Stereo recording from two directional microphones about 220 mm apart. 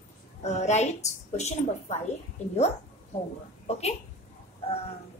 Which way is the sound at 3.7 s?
30° left (ahead or behind).